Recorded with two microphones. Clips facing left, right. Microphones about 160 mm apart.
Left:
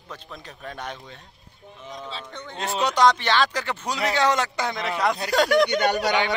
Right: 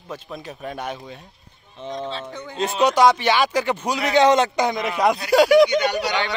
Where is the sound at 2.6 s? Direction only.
20° right (ahead or behind).